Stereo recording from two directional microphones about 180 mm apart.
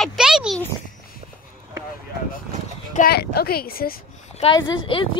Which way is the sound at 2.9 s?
60° left (ahead or behind).